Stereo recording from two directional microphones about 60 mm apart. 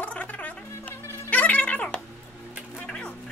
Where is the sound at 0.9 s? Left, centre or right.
Left.